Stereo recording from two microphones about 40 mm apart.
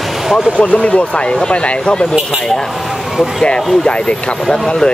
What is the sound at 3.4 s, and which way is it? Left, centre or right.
Speech, left.